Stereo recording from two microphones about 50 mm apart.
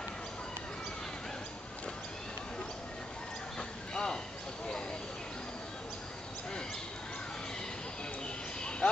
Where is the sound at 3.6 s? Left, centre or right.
Centre.